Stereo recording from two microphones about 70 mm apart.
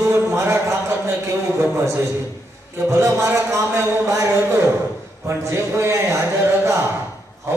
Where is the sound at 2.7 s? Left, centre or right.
Right.